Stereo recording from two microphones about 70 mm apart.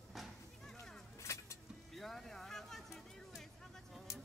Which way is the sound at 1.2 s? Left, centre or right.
Left.